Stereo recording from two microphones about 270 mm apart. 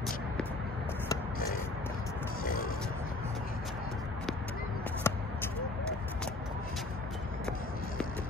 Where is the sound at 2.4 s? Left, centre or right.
Left.